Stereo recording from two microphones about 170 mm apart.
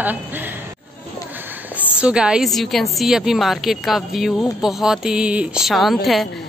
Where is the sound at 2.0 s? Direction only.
5° right (ahead or behind).